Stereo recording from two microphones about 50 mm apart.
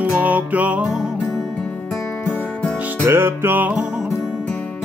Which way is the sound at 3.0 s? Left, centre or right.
Right.